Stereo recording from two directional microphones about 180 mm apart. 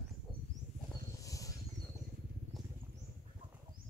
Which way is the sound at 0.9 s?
20° left (ahead or behind).